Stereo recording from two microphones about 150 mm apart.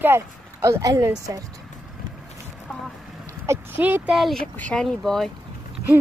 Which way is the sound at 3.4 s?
15° right (ahead or behind).